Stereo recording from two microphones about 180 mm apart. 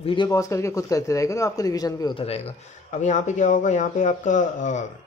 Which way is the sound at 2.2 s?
35° left (ahead or behind).